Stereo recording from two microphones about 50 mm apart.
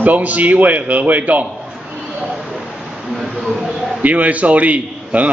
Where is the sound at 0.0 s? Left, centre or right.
Right.